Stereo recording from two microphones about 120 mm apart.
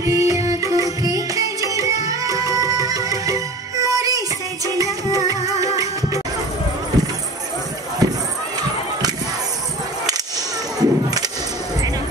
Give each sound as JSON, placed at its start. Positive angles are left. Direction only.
{"t": 0.0, "sound": "music", "side_deg": -25}
{"t": 8.0, "sound": "run", "side_deg": -30}
{"t": 10.8, "sound": "a sound", "side_deg": -30}